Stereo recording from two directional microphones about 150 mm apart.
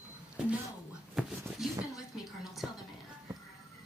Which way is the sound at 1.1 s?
5° right (ahead or behind).